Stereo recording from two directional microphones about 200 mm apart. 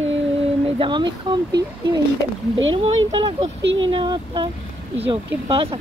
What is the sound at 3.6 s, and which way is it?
Speech, 70° right (ahead or behind).